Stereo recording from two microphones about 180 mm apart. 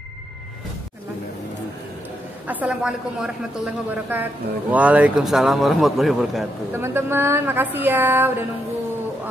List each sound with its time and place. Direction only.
2.4 s speech: 10° right (ahead or behind)
6.7 s speech: 10° right (ahead or behind)